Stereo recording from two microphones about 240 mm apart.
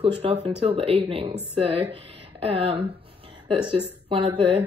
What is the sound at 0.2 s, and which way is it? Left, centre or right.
Speech, right.